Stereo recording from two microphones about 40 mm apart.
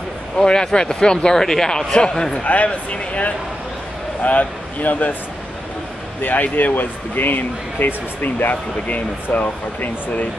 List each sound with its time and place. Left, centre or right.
0.4 s speech: centre
2.4 s speech: left
6.2 s speech: left